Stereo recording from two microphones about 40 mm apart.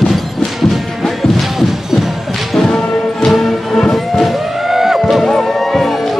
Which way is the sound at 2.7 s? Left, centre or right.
Centre.